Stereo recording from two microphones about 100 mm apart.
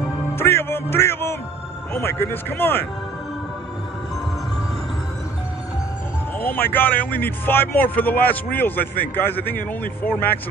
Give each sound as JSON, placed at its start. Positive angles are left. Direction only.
{"t": 0.4, "sound": "music", "side_deg": 25}
{"t": 2.0, "sound": "speech", "side_deg": 25}
{"t": 6.5, "sound": "speech", "side_deg": 20}